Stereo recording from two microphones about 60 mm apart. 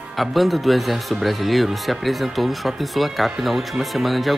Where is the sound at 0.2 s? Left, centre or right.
Centre.